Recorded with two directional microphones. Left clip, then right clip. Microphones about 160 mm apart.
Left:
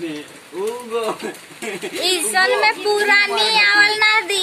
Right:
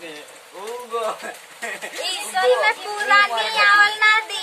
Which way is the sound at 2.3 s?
20° left (ahead or behind).